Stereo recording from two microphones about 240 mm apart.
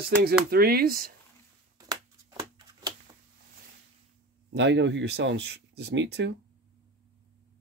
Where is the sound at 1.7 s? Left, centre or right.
Centre.